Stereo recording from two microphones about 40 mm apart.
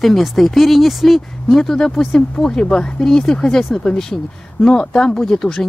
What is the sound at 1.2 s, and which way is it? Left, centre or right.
Speech, centre.